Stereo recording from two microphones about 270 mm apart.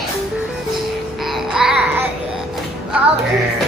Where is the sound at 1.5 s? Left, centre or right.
Centre.